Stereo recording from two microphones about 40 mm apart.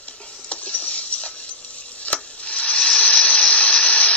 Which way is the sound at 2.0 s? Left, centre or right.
Left.